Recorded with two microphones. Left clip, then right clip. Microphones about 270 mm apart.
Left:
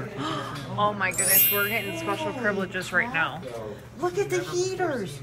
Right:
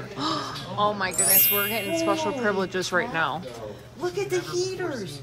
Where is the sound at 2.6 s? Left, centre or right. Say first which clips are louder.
Right 1 dB; centre.